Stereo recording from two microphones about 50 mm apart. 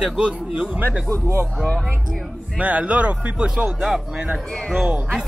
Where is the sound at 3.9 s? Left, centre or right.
Centre.